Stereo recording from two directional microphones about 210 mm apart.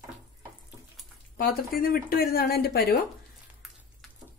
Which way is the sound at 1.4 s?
45° left (ahead or behind).